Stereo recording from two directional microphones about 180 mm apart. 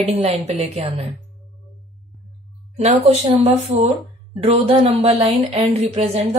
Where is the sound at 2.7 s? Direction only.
35° right (ahead or behind).